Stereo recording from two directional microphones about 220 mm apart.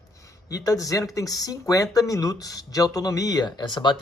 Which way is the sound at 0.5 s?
15° left (ahead or behind).